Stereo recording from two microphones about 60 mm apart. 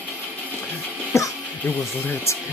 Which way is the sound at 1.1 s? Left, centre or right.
Left.